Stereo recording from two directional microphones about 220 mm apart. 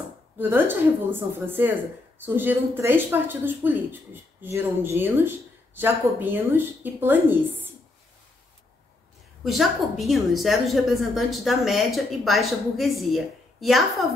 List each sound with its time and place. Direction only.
0.4 s a woman's voice: 10° right (ahead or behind)
9.4 s a woman's voice: centre (ahead or behind)